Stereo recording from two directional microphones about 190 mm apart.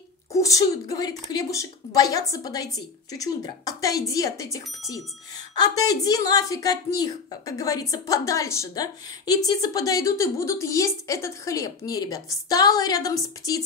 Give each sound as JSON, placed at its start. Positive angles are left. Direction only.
{"t": 0.3, "sound": "a woman's voice", "side_deg": 15}